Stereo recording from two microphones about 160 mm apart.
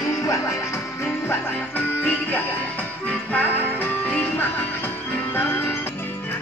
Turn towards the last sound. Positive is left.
turn(degrees=15)  # may be behind; listen again after turning